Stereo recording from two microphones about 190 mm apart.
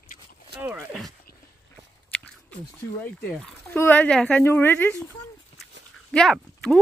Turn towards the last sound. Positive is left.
turn(degrees=5)  # may be behind; listen again after turning